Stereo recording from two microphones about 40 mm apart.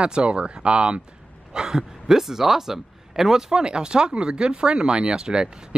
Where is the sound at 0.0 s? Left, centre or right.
Right.